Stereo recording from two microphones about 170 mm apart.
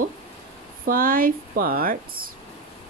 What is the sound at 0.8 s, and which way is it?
Speech, 55° right (ahead or behind).